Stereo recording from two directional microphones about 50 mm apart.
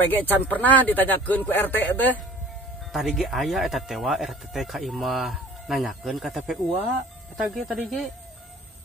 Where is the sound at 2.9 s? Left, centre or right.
Centre.